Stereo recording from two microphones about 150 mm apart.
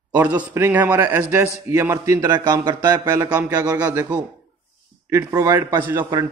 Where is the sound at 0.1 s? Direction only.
10° right (ahead or behind).